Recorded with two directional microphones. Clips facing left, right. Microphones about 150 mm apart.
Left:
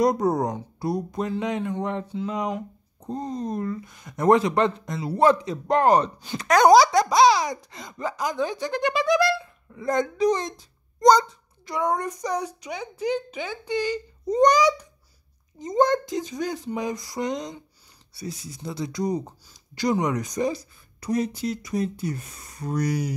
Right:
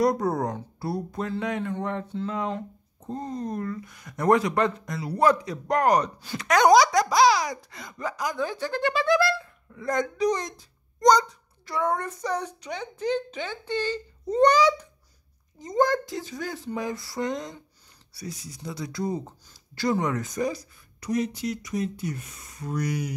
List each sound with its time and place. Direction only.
0.0 s speech: 20° left (ahead or behind)
9.8 s a child's voice: 30° left (ahead or behind)
11.6 s speech: 15° left (ahead or behind); by 23.1 s 35° left (ahead or behind)